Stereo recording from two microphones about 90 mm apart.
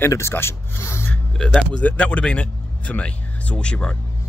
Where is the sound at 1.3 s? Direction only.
10° left (ahead or behind).